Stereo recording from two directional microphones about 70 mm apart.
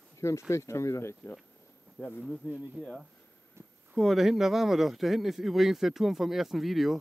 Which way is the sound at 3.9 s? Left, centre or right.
Centre.